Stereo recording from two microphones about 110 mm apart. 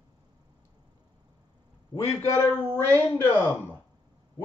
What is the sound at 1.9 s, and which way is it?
Speech, 25° left (ahead or behind).